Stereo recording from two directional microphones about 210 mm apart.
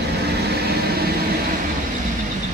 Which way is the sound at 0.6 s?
50° right (ahead or behind).